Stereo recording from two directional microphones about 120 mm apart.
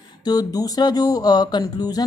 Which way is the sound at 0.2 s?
35° left (ahead or behind).